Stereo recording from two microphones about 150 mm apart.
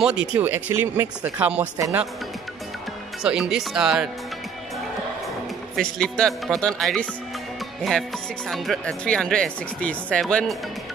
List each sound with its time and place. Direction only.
0.0 s speech: 5° right (ahead or behind)
3.2 s speech: 5° right (ahead or behind)
5.8 s speech: 5° left (ahead or behind)
8.5 s speech: 5° left (ahead or behind)